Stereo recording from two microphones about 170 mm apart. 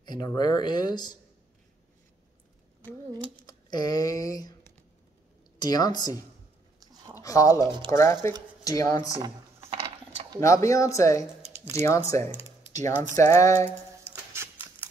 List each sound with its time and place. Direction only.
0.0 s speech: 25° left (ahead or behind)
3.3 s speech: 25° left (ahead or behind)
7.2 s speech: 20° left (ahead or behind)
9.2 s a sound: 15° right (ahead or behind)
10.4 s speech: 20° left (ahead or behind)
14.3 s a sound: 10° right (ahead or behind)